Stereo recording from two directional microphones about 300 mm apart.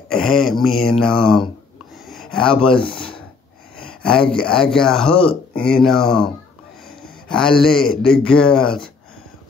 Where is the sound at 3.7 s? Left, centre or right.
Centre.